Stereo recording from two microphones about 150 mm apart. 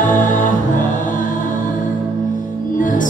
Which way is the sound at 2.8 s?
60° left (ahead or behind).